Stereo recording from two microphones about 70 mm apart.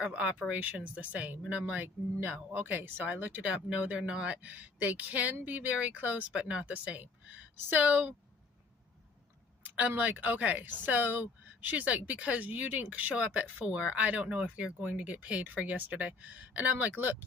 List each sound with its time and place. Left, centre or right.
0.0 s speech: centre
9.8 s speech: right